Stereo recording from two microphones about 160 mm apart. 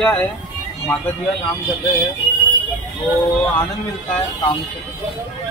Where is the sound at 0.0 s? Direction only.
5° left (ahead or behind).